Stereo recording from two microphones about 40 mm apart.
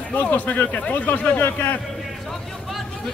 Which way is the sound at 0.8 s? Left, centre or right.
Left.